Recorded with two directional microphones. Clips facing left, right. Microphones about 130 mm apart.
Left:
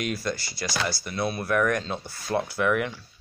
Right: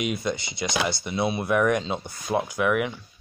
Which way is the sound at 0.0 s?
20° right (ahead or behind).